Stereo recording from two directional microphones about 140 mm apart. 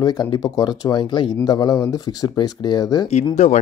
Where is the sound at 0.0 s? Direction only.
30° left (ahead or behind).